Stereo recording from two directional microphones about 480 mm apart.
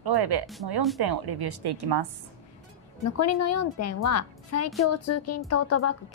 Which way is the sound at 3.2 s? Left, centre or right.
Left.